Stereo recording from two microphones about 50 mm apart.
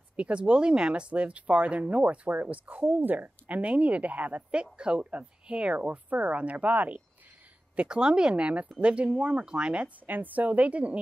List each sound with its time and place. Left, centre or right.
0.1 s speech: right
7.7 s speech: right
10.0 s speech: right